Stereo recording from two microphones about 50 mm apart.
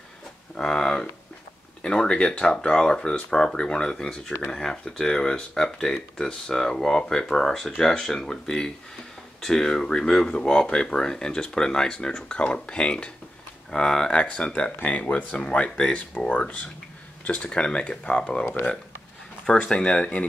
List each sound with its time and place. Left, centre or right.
0.6 s a sound: centre
1.8 s speech: centre
19.4 s speech: centre